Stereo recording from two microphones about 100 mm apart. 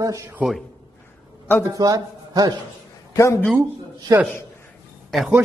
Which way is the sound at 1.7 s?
40° right (ahead or behind).